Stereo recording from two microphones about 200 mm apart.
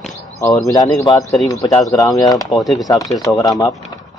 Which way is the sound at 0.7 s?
20° left (ahead or behind).